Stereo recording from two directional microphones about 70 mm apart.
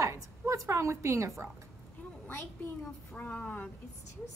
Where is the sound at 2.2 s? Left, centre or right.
Left.